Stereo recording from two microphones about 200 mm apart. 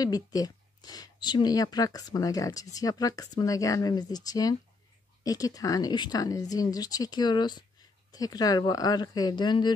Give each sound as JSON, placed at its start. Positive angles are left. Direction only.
{"t": 0.0, "sound": "speech", "side_deg": 20}